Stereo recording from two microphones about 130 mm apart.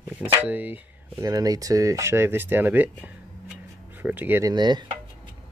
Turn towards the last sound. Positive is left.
turn(degrees=-35)  # may be behind; listen again after turning